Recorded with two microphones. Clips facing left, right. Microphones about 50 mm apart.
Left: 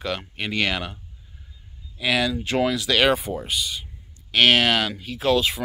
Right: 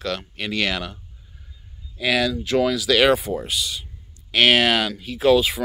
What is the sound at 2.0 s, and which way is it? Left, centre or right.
Speech, centre.